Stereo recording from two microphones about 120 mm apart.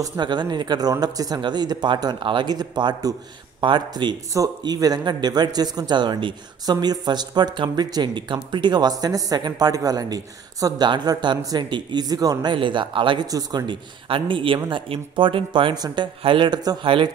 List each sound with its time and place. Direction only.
0.2 s speech: 40° right (ahead or behind)
13.3 s speech: 30° right (ahead or behind)
14.0 s speech: 45° right (ahead or behind)